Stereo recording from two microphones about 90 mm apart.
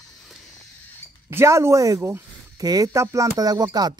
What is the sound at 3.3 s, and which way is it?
Speech, 45° right (ahead or behind).